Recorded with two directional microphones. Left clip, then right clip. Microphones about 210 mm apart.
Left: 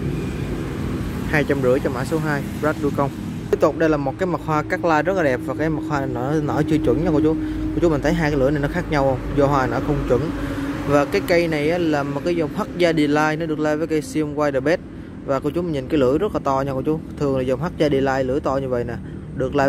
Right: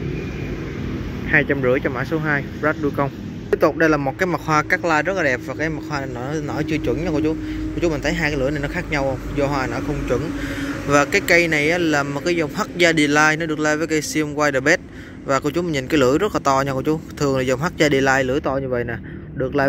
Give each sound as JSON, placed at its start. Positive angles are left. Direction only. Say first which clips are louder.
{"t": 1.3, "sound": "speech", "louder": "right 1 dB", "side_deg": 5}
{"t": 10.9, "sound": "a man's voice", "louder": "right 2 dB", "side_deg": 5}